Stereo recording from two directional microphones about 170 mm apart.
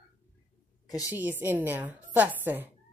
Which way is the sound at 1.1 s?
10° right (ahead or behind).